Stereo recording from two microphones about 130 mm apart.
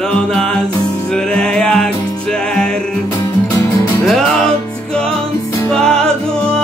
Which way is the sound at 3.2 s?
25° left (ahead or behind).